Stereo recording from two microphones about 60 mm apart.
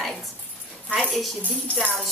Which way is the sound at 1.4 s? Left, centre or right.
Left.